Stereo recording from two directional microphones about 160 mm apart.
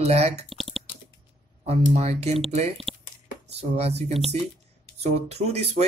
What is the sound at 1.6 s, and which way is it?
Speech, 40° right (ahead or behind).